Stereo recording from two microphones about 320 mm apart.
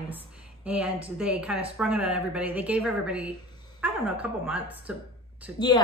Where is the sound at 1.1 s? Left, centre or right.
Centre.